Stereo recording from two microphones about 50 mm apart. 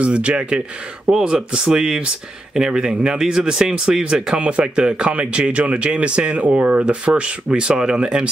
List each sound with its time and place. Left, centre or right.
0.0 s speech: right